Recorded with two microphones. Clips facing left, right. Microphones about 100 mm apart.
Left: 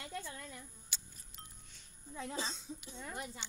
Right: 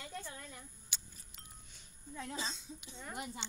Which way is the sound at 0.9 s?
Centre (ahead or behind).